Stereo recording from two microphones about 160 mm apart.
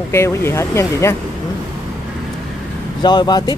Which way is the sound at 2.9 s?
25° left (ahead or behind).